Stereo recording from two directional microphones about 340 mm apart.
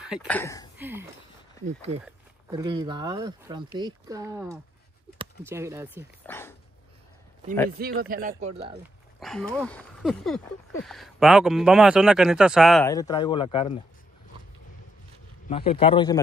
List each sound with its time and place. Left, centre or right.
0.0 s speech: centre
0.7 s speech: centre
2.0 s speech: centre
6.2 s speech: centre
7.8 s speech: right
9.2 s speech: centre
15.4 s a man's voice: centre